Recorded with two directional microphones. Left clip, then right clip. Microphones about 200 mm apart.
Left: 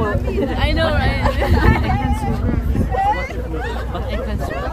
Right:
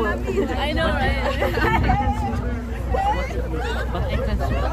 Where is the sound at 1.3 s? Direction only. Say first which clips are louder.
Left 2 dB; 20° left (ahead or behind).